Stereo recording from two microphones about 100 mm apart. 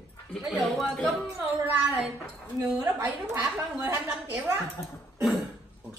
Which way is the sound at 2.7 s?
30° right (ahead or behind).